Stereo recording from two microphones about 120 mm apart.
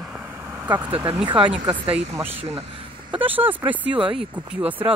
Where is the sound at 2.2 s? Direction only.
55° right (ahead or behind).